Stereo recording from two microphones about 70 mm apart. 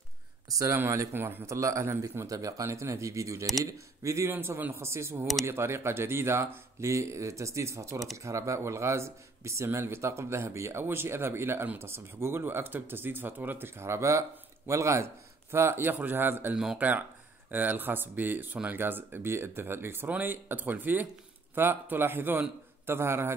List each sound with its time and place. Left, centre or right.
1.1 s a man's voice: right
4.3 s speech: right